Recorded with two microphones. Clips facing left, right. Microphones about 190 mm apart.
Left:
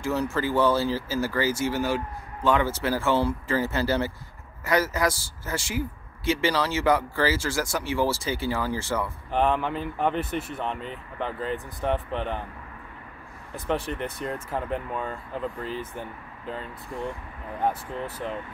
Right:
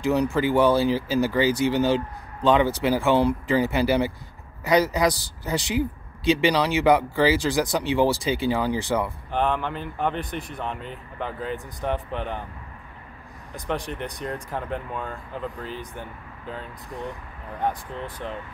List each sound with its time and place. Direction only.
0.0 s speech: 15° right (ahead or behind)
9.3 s speech: centre (ahead or behind)
13.7 s speech: centre (ahead or behind)